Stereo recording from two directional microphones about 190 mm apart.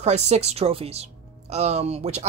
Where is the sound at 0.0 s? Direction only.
35° right (ahead or behind).